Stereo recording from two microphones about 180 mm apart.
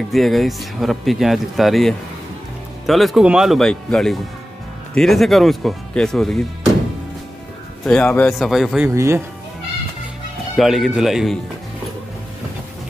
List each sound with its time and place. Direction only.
0.1 s speech: centre (ahead or behind)
7.8 s speech: 5° left (ahead or behind)
8.8 s speech: 15° right (ahead or behind)
10.5 s speech: centre (ahead or behind)